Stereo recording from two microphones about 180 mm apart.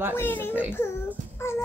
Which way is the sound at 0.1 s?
10° left (ahead or behind).